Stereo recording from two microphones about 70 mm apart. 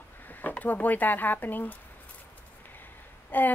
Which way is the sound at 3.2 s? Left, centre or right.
Left.